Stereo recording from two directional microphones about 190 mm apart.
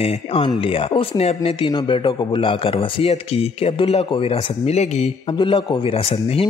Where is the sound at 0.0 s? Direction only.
30° left (ahead or behind).